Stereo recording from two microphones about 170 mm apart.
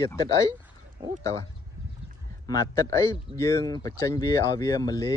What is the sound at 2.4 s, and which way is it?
Speech, 20° left (ahead or behind).